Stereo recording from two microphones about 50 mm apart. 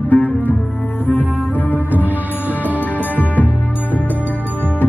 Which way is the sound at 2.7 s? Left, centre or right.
Left.